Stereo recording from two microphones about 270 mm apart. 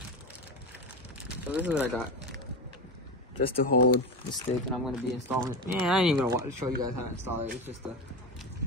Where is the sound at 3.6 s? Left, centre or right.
Left.